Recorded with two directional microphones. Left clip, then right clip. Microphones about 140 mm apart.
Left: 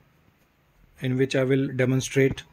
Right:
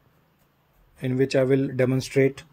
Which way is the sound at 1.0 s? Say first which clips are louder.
Right 2 dB; 5° right (ahead or behind).